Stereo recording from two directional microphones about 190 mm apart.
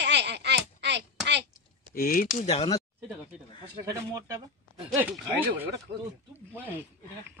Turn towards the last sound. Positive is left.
turn(degrees=-10)  # may be behind; listen again after turning